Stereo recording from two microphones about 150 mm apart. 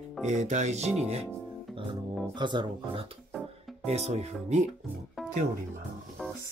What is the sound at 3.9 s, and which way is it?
Speech, 45° right (ahead or behind).